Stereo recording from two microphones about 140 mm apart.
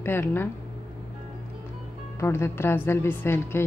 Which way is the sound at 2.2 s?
15° left (ahead or behind).